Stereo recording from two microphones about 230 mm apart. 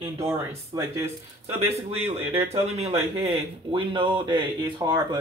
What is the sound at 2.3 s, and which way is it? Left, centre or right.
Speech, right.